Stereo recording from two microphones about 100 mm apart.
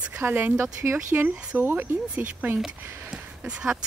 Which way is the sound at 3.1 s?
10° right (ahead or behind).